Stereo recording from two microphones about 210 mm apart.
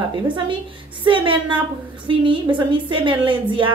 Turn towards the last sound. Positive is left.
turn(degrees=-25)  # may be behind; listen again after turning